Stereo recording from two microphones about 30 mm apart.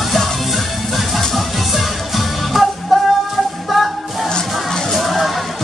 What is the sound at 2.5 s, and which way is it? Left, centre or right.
Music, centre.